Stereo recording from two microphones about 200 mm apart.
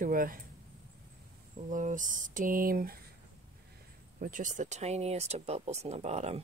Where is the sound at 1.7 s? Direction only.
40° right (ahead or behind).